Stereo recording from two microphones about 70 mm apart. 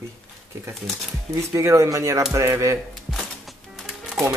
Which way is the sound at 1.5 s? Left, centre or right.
Right.